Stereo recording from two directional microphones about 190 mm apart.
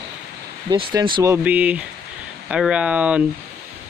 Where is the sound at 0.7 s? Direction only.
25° right (ahead or behind).